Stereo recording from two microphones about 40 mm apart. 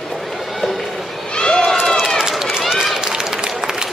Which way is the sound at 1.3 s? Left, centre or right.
Left.